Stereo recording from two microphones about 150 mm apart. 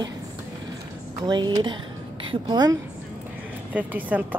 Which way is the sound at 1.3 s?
30° right (ahead or behind).